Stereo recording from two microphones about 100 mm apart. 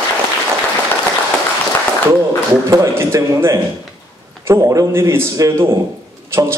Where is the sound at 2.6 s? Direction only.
30° right (ahead or behind).